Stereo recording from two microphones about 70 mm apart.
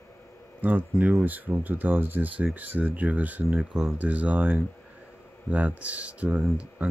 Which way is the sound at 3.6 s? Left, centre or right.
Centre.